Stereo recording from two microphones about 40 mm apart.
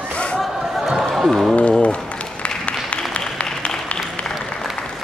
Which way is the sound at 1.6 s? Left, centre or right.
Left.